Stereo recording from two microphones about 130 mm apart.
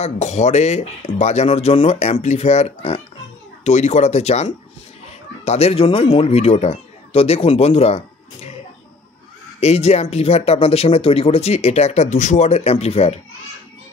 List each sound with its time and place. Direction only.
0.0 s speech: 60° left (ahead or behind)
9.6 s speech: 55° left (ahead or behind)